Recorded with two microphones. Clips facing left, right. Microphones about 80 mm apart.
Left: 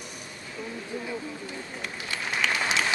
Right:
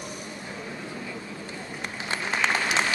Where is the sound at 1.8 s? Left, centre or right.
Right.